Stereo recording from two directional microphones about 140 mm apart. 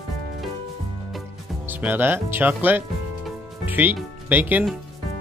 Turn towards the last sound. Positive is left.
turn(degrees=-10)  # may be behind; listen again after turning